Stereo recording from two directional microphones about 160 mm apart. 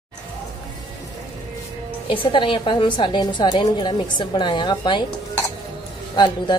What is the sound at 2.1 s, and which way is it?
A woman's voice, 30° left (ahead or behind).